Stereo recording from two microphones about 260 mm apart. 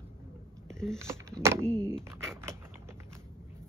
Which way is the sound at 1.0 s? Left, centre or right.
Centre.